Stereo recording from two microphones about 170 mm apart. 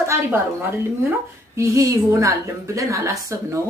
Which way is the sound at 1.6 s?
20° right (ahead or behind).